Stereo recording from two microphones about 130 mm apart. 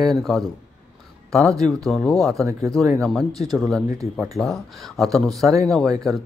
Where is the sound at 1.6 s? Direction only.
5° left (ahead or behind).